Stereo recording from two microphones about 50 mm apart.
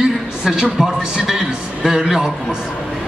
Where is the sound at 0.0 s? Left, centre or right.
Centre.